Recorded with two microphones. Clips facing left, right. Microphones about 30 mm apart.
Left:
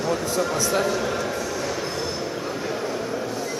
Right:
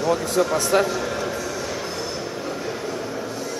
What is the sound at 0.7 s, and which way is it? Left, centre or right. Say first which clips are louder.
Speech: right 5 dB; right.